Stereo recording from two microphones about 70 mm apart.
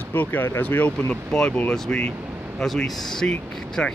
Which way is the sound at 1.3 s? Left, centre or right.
Centre.